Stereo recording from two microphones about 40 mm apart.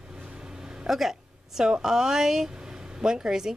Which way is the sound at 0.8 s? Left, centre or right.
Centre.